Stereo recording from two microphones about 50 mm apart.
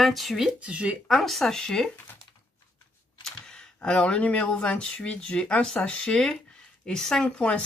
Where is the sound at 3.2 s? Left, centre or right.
Centre; by 4.5 s left.